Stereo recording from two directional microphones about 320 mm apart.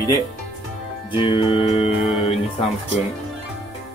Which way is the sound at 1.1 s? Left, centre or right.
Centre.